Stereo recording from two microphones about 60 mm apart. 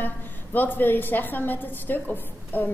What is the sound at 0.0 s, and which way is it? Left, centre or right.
A woman's voice, left.